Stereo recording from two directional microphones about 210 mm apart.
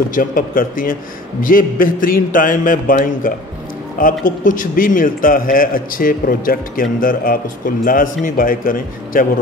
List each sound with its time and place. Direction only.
0.1 s a man's voice: 40° left (ahead or behind)